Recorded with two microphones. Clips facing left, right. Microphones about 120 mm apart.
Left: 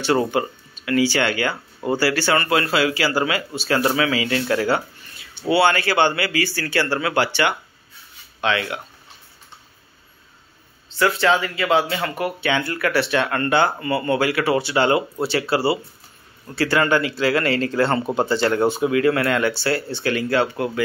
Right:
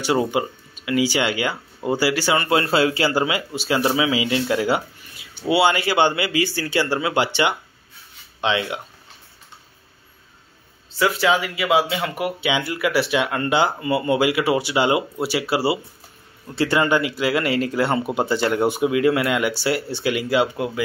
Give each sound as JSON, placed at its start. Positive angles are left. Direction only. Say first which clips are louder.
{"t": 0.0, "sound": "speech", "louder": "left 1 dB", "side_deg": -10}
{"t": 2.6, "sound": "speech", "louder": "right 1 dB", "side_deg": -30}
{"t": 11.0, "sound": "speech", "louder": "left 1 dB", "side_deg": -5}